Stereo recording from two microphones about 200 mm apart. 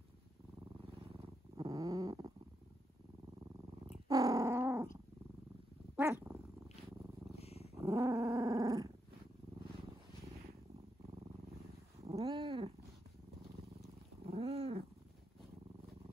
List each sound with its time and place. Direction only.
1.6 s purr: 15° right (ahead or behind)
3.8 s cat: 15° right (ahead or behind)
5.9 s cat: 10° right (ahead or behind)
7.3 s purr: 30° left (ahead or behind)
7.7 s dog: 15° right (ahead or behind)
12.0 s cat: 30° right (ahead or behind)
14.3 s cat: 30° right (ahead or behind)